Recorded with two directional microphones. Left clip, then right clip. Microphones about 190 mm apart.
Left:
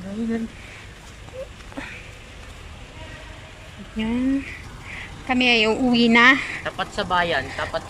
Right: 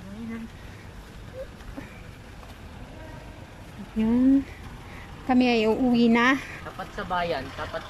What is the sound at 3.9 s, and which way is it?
Speech, 15° right (ahead or behind).